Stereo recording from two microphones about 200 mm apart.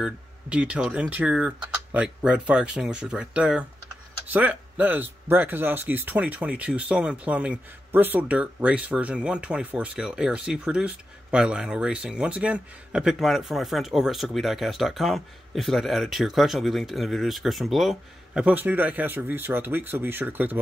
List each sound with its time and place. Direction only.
0.0 s speech: 5° right (ahead or behind)